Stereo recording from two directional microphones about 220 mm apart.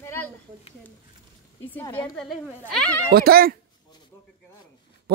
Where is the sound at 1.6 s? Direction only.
10° left (ahead or behind).